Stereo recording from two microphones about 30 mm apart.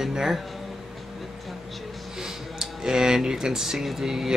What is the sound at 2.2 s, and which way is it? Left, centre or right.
Speech, right.